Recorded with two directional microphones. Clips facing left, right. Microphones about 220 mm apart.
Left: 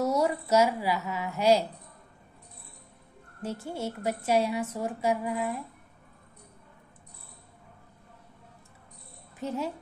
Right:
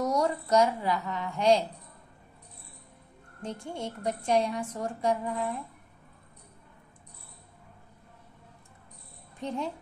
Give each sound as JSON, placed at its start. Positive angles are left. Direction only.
{"t": 0.0, "sound": "a woman's voice", "side_deg": 5}
{"t": 3.4, "sound": "a woman's voice", "side_deg": 5}
{"t": 9.4, "sound": "a woman's voice", "side_deg": 5}